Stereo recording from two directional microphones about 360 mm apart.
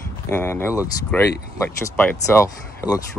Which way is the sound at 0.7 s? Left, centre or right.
Centre.